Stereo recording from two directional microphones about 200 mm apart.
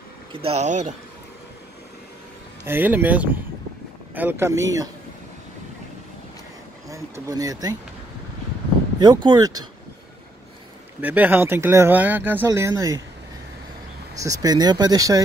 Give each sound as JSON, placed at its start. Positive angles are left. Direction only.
{"t": 0.3, "sound": "speech", "side_deg": -30}
{"t": 2.6, "sound": "speech", "side_deg": -10}
{"t": 6.9, "sound": "speech", "side_deg": -15}
{"t": 9.0, "sound": "speech", "side_deg": -20}
{"t": 11.0, "sound": "speech", "side_deg": -10}
{"t": 14.4, "sound": "speech", "side_deg": -20}